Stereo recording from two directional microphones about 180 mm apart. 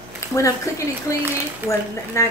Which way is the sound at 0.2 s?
15° left (ahead or behind).